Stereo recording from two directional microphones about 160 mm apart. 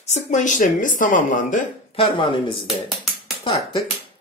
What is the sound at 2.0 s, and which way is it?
Speech, 30° left (ahead or behind).